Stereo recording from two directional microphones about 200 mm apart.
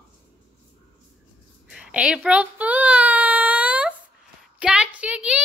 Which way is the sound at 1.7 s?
5° right (ahead or behind).